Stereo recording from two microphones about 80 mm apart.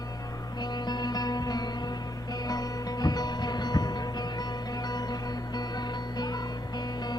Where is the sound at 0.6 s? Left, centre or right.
Left.